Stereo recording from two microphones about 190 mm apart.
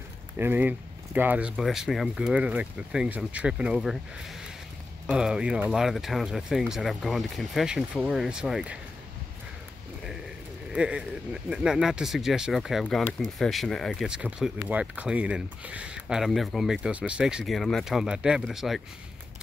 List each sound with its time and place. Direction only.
0.4 s speech: 10° right (ahead or behind)
5.0 s speech: 5° right (ahead or behind)
10.7 s speech: 5° right (ahead or behind)